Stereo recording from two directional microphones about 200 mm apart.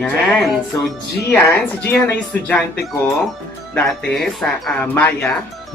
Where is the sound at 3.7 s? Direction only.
5° left (ahead or behind).